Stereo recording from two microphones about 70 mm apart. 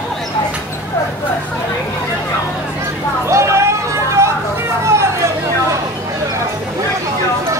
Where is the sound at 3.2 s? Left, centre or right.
Right.